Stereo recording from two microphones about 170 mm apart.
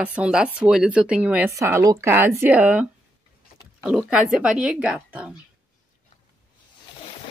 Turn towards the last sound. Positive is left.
turn(degrees=-5)  # may be behind; listen again after turning